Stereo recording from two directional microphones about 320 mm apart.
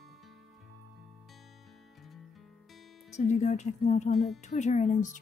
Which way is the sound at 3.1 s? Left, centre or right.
Left.